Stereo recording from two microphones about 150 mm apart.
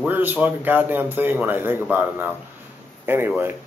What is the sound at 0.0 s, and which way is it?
Speech, 10° right (ahead or behind).